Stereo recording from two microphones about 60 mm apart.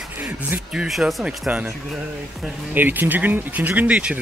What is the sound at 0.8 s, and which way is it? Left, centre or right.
Speech, centre.